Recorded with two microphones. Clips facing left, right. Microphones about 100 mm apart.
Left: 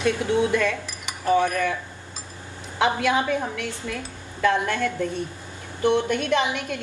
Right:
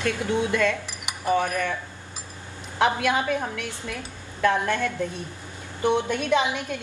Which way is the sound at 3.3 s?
15° right (ahead or behind).